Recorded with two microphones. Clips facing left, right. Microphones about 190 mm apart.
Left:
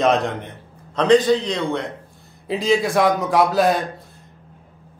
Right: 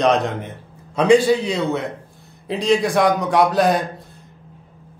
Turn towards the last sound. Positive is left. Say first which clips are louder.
# right 1 dB
turn(degrees=0)  # may be behind; listen again after turning